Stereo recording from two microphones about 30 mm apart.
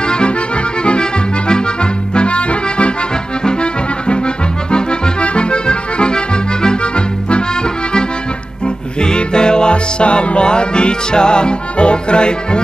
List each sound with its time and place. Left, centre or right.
0.0 s accordion: left
2.1 s music: left
4.6 s accordion: left
9.0 s music: left